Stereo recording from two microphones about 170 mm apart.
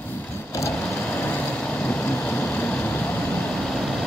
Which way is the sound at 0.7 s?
Centre (ahead or behind).